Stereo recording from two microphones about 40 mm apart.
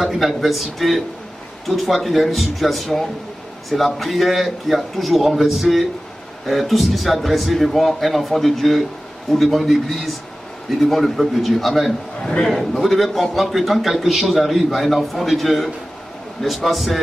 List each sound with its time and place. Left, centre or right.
0.0 s a man's voice: centre
12.2 s a man's voice: centre
12.5 s a man's voice: centre